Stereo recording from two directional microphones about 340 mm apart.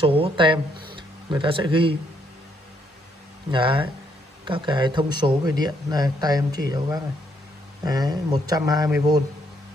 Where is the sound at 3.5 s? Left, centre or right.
Centre.